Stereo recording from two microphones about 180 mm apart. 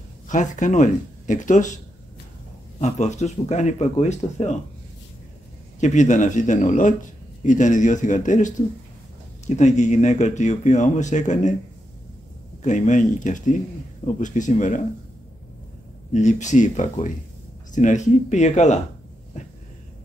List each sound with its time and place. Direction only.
0.3 s speech: 45° left (ahead or behind)
2.8 s speech: 40° left (ahead or behind)
5.8 s speech: 40° left (ahead or behind)
12.6 s speech: 40° left (ahead or behind)
16.1 s speech: 40° left (ahead or behind)